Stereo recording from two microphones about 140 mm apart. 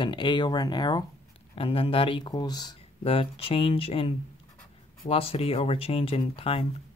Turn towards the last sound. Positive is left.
turn(degrees=40)  # may be behind; listen again after turning